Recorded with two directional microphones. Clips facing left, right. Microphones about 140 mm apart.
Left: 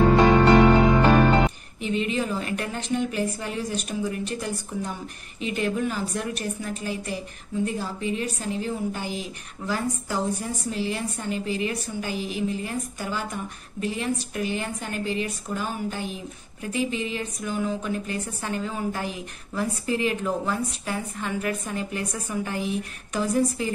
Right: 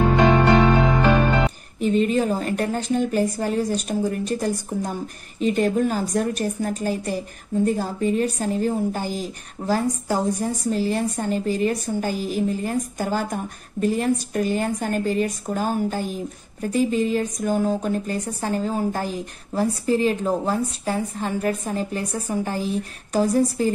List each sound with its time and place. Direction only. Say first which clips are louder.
1.8 s a woman's voice: right 7 dB; 40° right (ahead or behind)